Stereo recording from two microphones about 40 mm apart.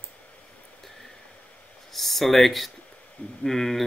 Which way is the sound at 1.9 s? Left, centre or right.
Centre.